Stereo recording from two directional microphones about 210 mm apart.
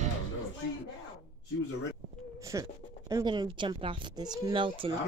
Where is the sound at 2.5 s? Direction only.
15° right (ahead or behind).